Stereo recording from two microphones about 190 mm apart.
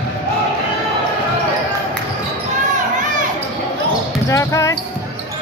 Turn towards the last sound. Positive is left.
turn(degrees=15)  # may be behind; listen again after turning